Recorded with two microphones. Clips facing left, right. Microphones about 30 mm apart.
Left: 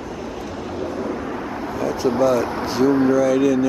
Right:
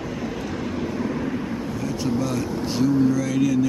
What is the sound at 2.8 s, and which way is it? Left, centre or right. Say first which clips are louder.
Speech: left 3 dB; left.